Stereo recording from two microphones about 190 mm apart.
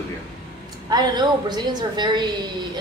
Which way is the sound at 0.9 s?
20° right (ahead or behind).